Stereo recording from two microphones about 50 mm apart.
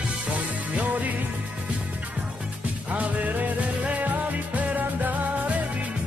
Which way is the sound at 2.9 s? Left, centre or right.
Right.